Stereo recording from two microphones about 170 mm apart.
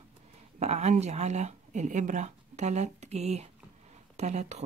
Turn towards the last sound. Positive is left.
turn(degrees=-40)  # may be behind; listen again after turning